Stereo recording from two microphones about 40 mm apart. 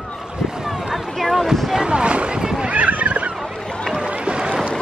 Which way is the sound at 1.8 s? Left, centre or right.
Right.